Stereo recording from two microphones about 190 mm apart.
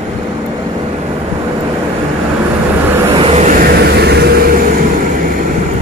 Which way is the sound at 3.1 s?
35° right (ahead or behind).